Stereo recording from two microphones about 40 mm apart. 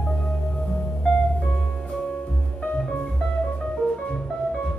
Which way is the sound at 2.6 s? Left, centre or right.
Left.